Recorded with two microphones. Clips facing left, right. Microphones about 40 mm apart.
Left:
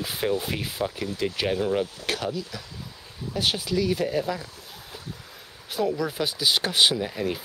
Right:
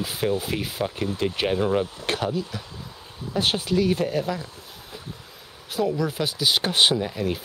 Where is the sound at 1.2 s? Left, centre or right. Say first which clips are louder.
Right 1 dB; centre.